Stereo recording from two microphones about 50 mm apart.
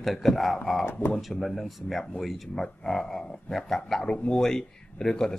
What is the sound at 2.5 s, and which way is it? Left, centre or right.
A man's voice, centre.